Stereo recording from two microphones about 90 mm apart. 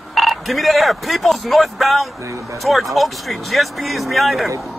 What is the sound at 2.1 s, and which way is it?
Speech, 35° right (ahead or behind).